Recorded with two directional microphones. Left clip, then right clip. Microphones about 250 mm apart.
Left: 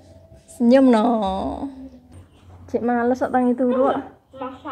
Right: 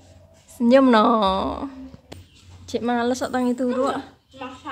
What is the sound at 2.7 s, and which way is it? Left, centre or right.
A woman's voice, right.